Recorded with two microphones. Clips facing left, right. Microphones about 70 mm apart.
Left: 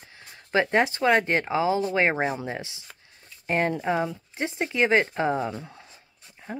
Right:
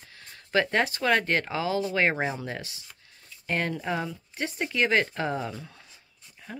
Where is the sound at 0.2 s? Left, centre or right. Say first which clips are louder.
Left 2 dB; centre.